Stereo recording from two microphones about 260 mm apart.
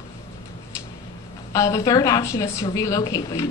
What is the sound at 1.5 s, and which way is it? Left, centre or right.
A woman's voice, centre.